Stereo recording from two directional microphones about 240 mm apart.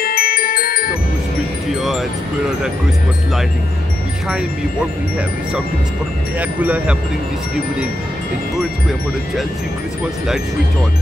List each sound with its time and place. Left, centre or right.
0.0 s glockenspiel: left
1.8 s music: centre
6.6 s speech: centre